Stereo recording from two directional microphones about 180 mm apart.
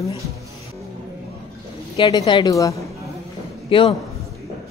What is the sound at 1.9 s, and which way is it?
Speech, 20° left (ahead or behind).